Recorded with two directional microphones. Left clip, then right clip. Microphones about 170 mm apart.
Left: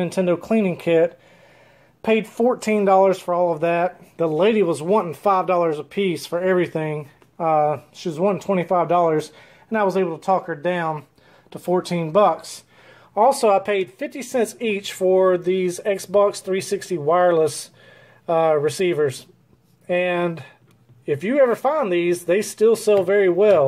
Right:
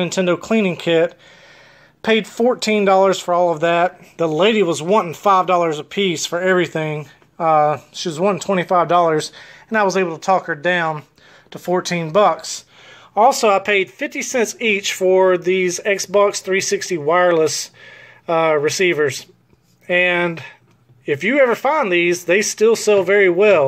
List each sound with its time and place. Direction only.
0.0 s speech: centre (ahead or behind)
2.5 s speech: 10° right (ahead or behind)
2.8 s speech: centre (ahead or behind)